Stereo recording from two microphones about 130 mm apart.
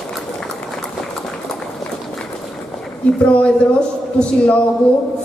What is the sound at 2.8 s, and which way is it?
A woman's voice, 10° left (ahead or behind).